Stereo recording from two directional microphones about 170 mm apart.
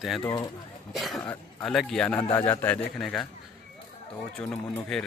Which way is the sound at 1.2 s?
20° left (ahead or behind).